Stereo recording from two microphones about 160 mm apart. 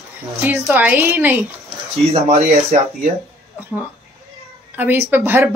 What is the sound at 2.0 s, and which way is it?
Speech, 40° right (ahead or behind).